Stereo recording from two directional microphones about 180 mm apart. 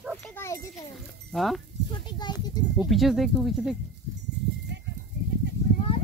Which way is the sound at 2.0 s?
25° left (ahead or behind).